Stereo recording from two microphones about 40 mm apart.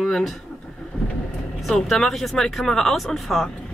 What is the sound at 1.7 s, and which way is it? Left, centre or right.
A woman's voice, centre.